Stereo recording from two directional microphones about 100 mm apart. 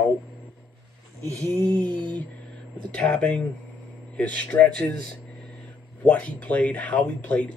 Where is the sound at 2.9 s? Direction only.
10° left (ahead or behind).